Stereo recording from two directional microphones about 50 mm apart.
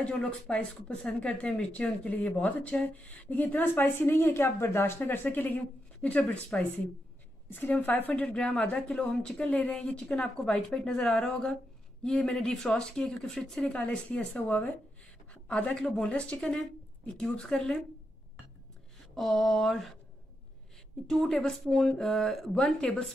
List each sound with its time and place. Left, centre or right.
0.5 s a woman's voice: left
6.0 s speech: left
7.5 s a woman's voice: left; by 16.1 s centre
16.1 s speech: left
19.1 s mantra: centre
21.1 s speech: centre
22.6 s speech: centre